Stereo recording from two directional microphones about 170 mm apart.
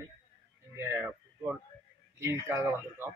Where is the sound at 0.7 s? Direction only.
15° right (ahead or behind).